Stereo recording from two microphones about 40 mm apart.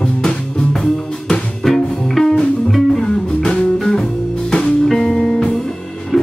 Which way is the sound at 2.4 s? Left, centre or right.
Left.